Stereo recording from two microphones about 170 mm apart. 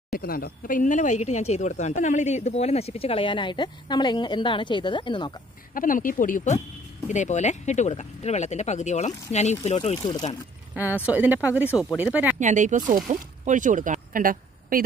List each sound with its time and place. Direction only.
0.1 s speech: 60° left (ahead or behind); by 5.3 s 30° left (ahead or behind)
5.8 s speech: 55° left (ahead or behind)
10.7 s speech: 10° right (ahead or behind)
12.4 s speech: 45° right (ahead or behind)